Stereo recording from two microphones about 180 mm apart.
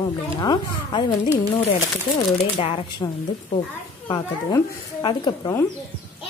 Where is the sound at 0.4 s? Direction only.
25° left (ahead or behind).